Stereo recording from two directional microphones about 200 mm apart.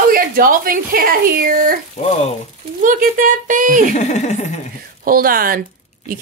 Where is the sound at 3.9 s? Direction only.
35° left (ahead or behind).